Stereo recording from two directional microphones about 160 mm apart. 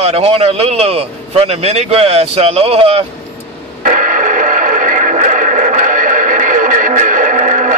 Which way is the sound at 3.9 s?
55° right (ahead or behind).